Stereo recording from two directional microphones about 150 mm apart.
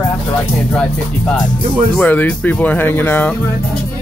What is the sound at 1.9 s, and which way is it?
Speech, 10° left (ahead or behind).